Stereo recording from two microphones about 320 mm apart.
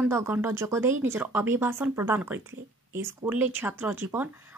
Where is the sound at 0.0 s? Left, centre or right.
Centre.